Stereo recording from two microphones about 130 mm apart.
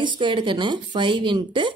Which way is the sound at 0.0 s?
40° right (ahead or behind).